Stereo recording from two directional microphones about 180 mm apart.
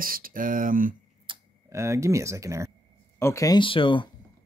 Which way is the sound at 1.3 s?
30° right (ahead or behind).